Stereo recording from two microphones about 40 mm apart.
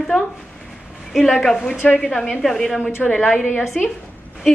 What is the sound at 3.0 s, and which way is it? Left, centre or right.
Speech, left.